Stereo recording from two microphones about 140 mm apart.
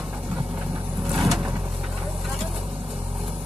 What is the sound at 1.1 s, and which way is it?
Vehicle, 5° right (ahead or behind).